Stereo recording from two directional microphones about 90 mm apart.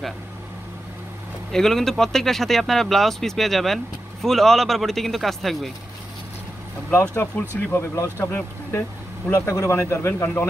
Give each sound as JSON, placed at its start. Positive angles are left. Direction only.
{"t": 1.5, "sound": "speech", "side_deg": 5}
{"t": 7.0, "sound": "speech", "side_deg": 15}
{"t": 7.9, "sound": "speech", "side_deg": 30}